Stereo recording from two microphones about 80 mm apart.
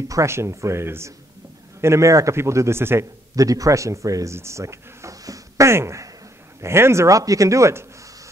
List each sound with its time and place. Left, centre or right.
0.1 s a man's voice: right
3.3 s a man's voice: right